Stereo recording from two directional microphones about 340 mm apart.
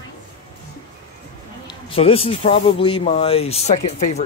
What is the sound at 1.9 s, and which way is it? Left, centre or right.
A man's voice, centre.